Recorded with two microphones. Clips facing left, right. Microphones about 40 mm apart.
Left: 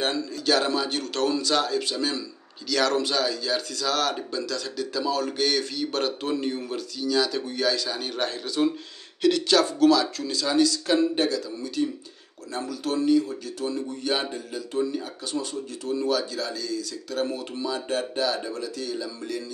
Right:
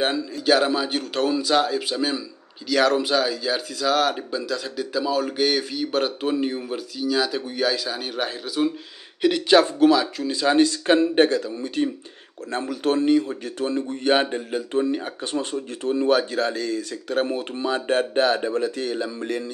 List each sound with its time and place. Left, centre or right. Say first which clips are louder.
0.0 s speech: right 3 dB; centre
9.2 s speech: right 4 dB; right
10.4 s speech: right 4 dB; right